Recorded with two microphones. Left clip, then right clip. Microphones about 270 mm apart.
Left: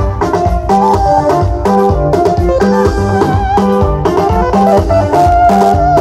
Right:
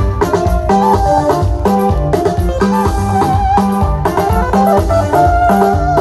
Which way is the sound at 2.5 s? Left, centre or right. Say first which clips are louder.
Left 4 dB; left.